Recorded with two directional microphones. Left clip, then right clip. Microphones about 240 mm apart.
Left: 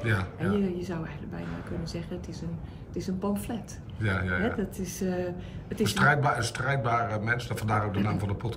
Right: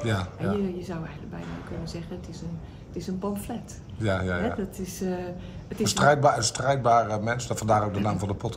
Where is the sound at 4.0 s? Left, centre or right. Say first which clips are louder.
Right 3 dB; centre.